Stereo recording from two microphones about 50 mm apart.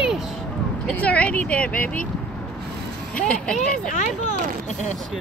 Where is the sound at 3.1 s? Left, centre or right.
Left.